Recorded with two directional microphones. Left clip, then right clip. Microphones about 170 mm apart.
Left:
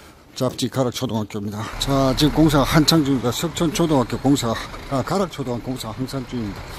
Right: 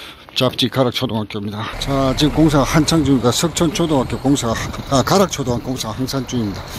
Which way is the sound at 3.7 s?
5° left (ahead or behind).